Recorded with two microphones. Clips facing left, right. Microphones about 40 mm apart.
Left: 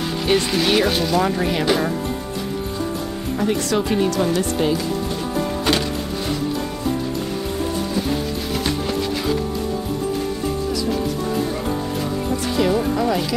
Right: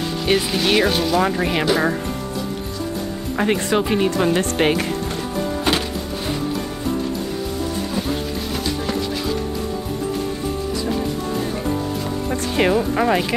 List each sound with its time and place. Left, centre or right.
0.3 s speech: centre
1.2 s speech: centre
3.3 s speech: right
3.6 s speech: right
4.4 s speech: right
5.7 s music: centre
12.3 s music: right
12.9 s speech: right